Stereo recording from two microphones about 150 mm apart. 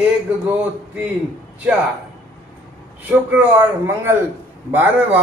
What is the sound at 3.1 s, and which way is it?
A man's voice, 10° right (ahead or behind).